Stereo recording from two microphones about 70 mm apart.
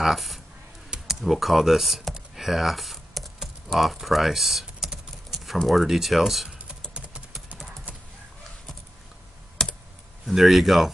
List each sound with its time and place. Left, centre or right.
0.0 s speech: centre
0.8 s a sound: centre
1.2 s speech: centre
2.3 s typing: centre
5.6 s speech: centre
6.9 s a sound: centre
9.6 s computer keyboard: centre
10.2 s speech: centre